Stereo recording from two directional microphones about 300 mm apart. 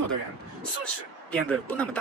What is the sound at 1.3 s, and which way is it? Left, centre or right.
Speech, centre.